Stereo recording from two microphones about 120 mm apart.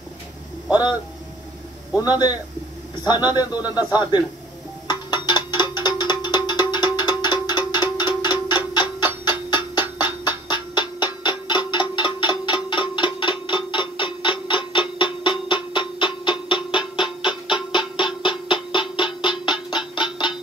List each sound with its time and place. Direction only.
0.7 s speech: 35° left (ahead or behind)
2.0 s a man's voice: 35° left (ahead or behind)
4.8 s music: 35° left (ahead or behind)